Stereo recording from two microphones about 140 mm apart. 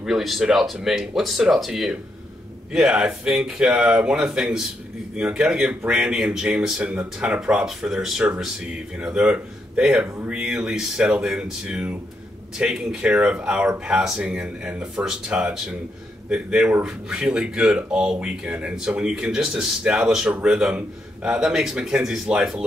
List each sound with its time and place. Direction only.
0.0 s speech: centre (ahead or behind)